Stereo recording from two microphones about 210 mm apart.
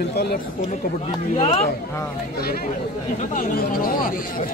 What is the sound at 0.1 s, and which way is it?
Speech, 45° left (ahead or behind).